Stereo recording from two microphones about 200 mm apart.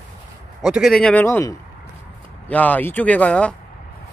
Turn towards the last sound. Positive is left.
turn(degrees=5)  # may be behind; listen again after turning